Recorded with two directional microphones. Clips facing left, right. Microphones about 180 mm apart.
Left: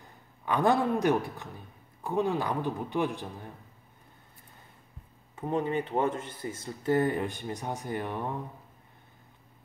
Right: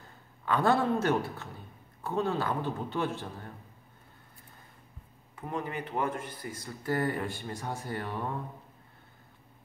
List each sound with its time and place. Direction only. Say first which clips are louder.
0.0 s speech: even; 15° left (ahead or behind)
5.3 s speech: left 6 dB; 25° left (ahead or behind)